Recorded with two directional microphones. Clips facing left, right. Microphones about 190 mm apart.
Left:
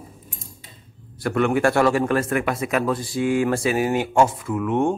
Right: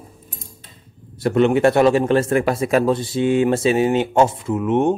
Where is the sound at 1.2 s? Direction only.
25° right (ahead or behind).